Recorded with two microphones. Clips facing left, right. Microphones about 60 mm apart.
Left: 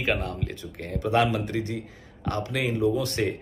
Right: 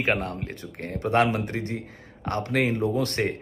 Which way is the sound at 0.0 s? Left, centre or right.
Right.